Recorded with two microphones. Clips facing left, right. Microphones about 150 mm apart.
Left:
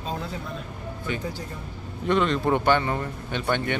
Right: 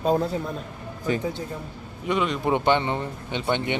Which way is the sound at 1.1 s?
35° right (ahead or behind).